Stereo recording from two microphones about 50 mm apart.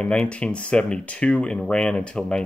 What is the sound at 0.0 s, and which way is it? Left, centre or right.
Speech, left.